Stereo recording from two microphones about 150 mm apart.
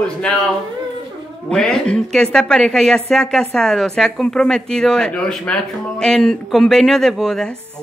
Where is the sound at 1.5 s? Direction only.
5° left (ahead or behind).